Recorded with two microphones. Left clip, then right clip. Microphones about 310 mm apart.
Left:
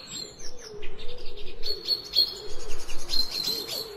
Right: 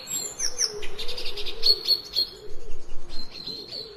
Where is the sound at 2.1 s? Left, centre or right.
Centre.